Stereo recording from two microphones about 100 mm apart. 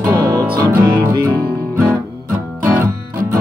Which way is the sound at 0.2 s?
35° right (ahead or behind).